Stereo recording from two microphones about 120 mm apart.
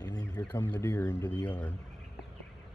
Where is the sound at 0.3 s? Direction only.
15° left (ahead or behind).